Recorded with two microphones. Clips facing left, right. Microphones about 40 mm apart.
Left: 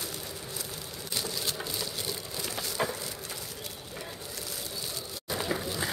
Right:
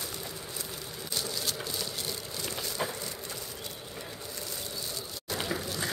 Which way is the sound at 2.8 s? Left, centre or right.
Left.